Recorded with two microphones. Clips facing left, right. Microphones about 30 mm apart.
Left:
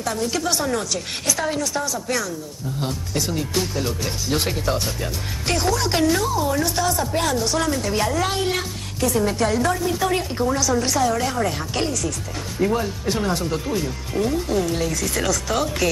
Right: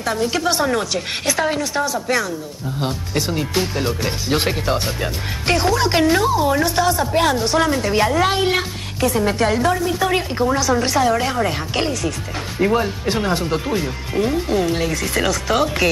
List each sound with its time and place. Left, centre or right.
0.0 s speech: right